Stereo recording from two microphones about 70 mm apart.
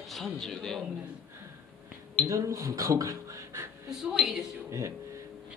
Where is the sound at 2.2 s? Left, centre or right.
Right.